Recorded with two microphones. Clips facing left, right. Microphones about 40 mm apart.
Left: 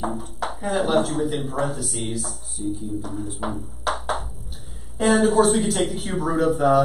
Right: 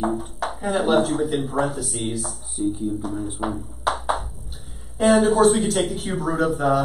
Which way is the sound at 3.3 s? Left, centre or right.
Centre.